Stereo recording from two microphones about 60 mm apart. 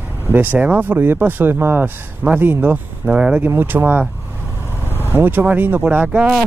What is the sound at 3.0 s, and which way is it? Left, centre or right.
Speech, right.